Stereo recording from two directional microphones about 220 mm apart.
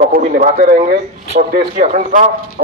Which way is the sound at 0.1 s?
35° right (ahead or behind).